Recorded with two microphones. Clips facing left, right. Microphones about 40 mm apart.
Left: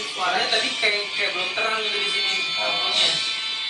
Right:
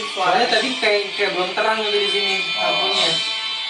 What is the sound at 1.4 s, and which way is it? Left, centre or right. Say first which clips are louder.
Speech: right 5 dB; centre.